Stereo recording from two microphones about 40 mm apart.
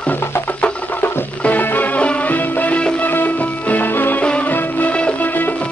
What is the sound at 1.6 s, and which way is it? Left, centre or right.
Music, left.